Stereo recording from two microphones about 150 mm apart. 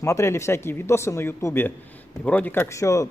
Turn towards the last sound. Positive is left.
turn(degrees=20)  # may be behind; listen again after turning